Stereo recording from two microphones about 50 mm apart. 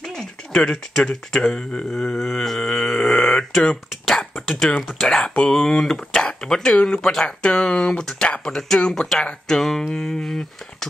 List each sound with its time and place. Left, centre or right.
0.0 s speech: centre
4.0 s throat clearing: centre
4.5 s speech: centre
10.2 s speech: centre